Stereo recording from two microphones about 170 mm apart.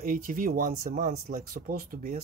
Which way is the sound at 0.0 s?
55° right (ahead or behind).